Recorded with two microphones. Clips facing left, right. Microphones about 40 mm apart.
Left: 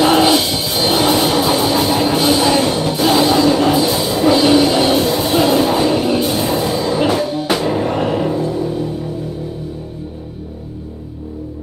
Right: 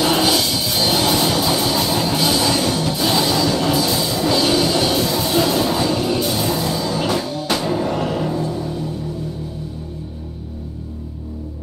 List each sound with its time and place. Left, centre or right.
0.0 s music: left